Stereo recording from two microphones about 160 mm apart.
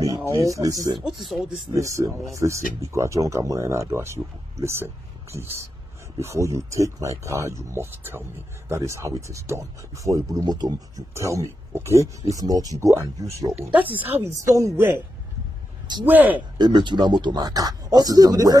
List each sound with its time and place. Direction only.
0.5 s speech: 20° right (ahead or behind)
0.7 s speech: centre (ahead or behind)
1.7 s speech: 20° right (ahead or behind)
13.5 s speech: 10° right (ahead or behind)
16.1 s speech: 10° right (ahead or behind)
16.3 s speech: 25° right (ahead or behind)